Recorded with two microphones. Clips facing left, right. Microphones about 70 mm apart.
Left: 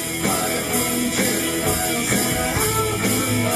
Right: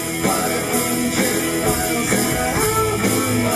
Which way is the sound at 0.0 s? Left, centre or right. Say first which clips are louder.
Right 3 dB; centre.